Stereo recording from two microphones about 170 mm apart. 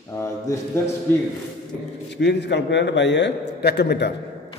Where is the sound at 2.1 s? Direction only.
90° left.